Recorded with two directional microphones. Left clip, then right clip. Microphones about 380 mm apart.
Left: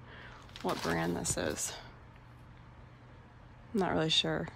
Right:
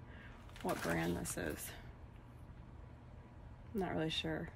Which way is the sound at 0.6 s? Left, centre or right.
Centre.